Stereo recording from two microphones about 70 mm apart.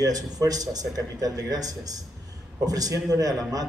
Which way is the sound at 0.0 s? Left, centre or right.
Right.